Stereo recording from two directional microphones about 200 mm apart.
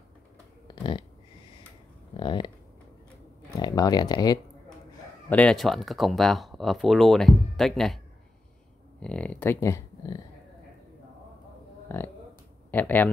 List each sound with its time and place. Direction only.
2.1 s a sound: 25° left (ahead or behind)
3.4 s speech: 20° left (ahead or behind)
5.3 s speech: 5° left (ahead or behind)
9.0 s speech: 5° left (ahead or behind)
11.9 s a sound: 10° left (ahead or behind)
12.7 s speech: 10° left (ahead or behind)